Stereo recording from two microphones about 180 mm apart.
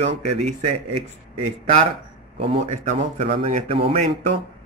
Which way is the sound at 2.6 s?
40° right (ahead or behind).